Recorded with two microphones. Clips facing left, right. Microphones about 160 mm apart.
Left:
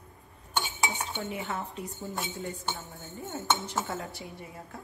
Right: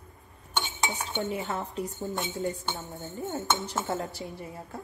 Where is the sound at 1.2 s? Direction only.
40° right (ahead or behind).